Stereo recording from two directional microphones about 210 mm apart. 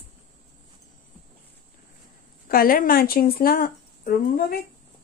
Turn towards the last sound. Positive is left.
turn(degrees=45)  # may be behind; listen again after turning